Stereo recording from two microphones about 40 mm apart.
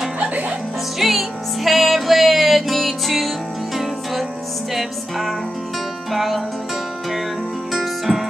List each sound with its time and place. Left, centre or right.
0.2 s music: right
0.9 s music: centre
7.7 s music: centre